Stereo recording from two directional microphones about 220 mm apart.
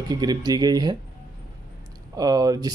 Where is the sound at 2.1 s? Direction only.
15° right (ahead or behind).